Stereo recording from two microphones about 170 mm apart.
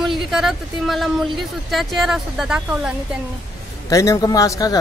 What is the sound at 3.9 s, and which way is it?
Speech, 20° left (ahead or behind).